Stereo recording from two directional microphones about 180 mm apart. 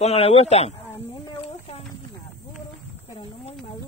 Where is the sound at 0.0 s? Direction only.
35° left (ahead or behind).